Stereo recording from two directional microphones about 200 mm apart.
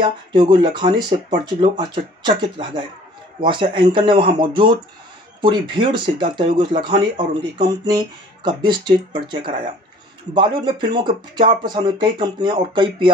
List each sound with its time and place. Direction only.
0.0 s speech: 25° right (ahead or behind)